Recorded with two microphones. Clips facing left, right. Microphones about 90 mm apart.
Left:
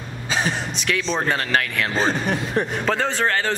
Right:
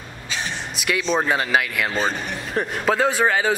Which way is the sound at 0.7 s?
5° right (ahead or behind).